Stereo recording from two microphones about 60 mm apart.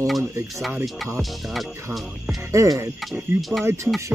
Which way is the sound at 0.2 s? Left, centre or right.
Right.